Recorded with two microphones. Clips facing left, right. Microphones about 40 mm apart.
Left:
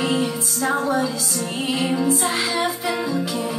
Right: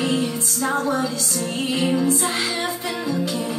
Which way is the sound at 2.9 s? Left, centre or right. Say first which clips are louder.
Left 1 dB; centre.